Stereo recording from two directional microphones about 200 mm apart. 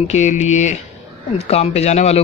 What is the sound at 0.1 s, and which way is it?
A man's voice, 35° left (ahead or behind).